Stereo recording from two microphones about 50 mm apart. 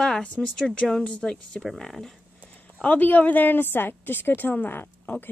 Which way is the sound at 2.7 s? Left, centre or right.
Left.